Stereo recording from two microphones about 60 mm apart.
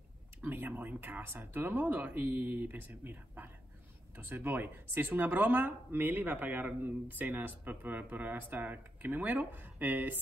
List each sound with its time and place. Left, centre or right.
0.4 s speech: right